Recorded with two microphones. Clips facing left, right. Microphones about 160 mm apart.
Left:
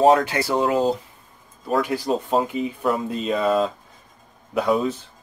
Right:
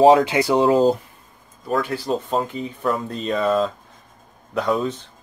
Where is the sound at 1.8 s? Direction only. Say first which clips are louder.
Left 2 dB; 10° left (ahead or behind).